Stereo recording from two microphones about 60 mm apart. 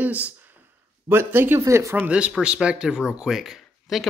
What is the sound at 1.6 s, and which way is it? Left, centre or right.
Speech, right.